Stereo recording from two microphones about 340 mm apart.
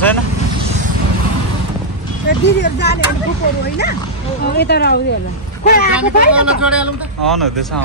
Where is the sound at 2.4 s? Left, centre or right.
Left.